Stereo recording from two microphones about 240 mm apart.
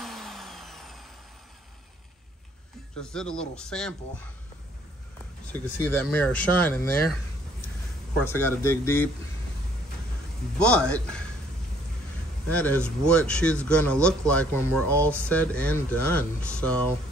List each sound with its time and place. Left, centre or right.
0.0 s a sound: centre
3.0 s speech: centre
5.5 s speech: centre
8.3 s speech: centre
10.6 s speech: centre
12.4 s speech: centre